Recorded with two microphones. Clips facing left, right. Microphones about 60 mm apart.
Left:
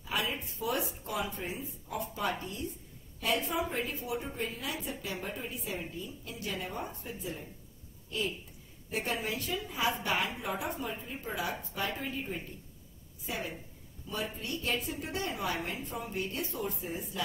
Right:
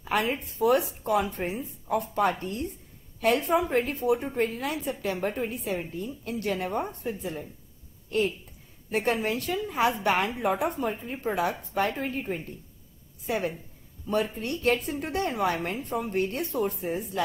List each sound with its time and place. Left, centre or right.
0.1 s a woman's voice: right
8.9 s a woman's voice: right